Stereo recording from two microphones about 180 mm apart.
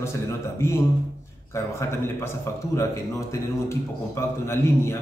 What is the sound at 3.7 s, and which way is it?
A man's voice, 15° left (ahead or behind).